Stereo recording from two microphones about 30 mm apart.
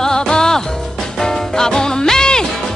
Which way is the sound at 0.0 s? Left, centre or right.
Left.